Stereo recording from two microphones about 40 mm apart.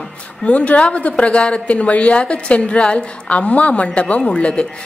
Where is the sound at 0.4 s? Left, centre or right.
Left.